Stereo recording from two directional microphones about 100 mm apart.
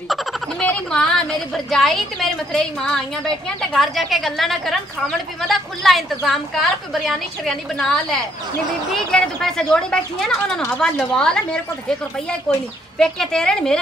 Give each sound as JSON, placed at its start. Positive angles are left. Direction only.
{"t": 0.1, "sound": "frog", "side_deg": 0}
{"t": 0.6, "sound": "a sound", "side_deg": 10}
{"t": 1.7, "sound": "a woman's voice", "side_deg": 5}